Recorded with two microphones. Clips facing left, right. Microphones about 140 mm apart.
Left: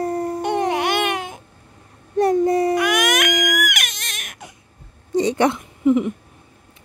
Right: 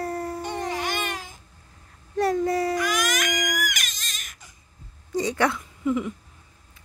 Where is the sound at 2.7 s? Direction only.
65° left (ahead or behind).